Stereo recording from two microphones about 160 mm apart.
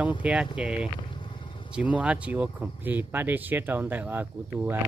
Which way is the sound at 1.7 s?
10° right (ahead or behind).